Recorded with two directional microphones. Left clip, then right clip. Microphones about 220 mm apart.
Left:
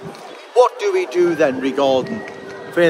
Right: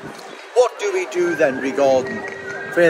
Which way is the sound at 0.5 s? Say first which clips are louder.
Left 3 dB; 20° left (ahead or behind).